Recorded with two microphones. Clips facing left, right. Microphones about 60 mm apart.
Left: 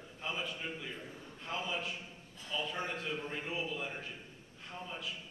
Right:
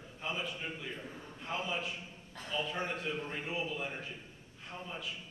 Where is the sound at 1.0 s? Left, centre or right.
Right.